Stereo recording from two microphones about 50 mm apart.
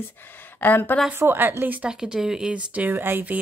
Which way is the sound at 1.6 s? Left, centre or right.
Right.